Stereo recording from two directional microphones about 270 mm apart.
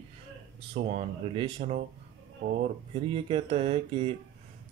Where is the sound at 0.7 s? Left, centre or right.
Right.